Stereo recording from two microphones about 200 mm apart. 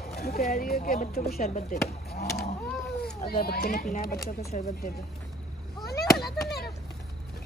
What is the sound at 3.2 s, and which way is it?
Speech, 50° left (ahead or behind).